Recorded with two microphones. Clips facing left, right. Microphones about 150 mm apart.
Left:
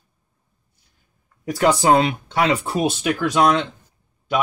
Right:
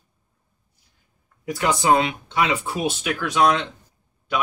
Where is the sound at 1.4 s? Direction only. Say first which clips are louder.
Left 4 dB; 40° left (ahead or behind).